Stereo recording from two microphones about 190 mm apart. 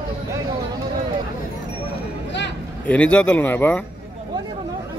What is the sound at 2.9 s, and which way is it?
Speech, 5° left (ahead or behind).